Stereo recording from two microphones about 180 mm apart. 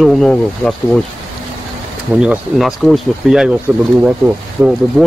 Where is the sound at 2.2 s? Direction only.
5° right (ahead or behind).